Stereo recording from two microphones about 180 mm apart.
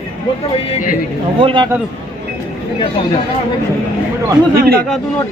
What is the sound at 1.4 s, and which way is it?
Speech, 30° right (ahead or behind).